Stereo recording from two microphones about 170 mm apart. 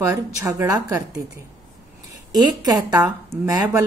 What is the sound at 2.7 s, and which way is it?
A woman's voice, 20° right (ahead or behind).